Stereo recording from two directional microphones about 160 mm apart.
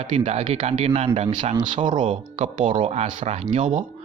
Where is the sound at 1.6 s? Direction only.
30° right (ahead or behind).